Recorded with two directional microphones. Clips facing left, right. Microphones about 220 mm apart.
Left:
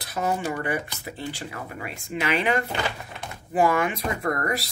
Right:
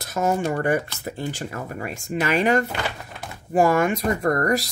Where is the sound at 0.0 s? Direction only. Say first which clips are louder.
Right 4 dB; 45° right (ahead or behind).